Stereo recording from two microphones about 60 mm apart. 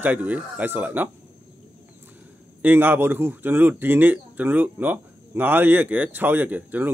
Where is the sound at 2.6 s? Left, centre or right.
Right.